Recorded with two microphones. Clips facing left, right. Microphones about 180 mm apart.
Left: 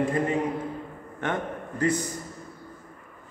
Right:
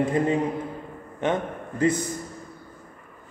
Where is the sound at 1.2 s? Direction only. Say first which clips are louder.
Right 4 dB; 20° right (ahead or behind).